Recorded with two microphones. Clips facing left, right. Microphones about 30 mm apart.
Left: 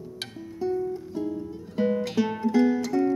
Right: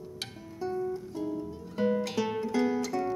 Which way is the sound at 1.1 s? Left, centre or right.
Centre.